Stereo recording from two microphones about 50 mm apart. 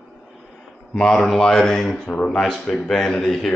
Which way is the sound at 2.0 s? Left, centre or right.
Left.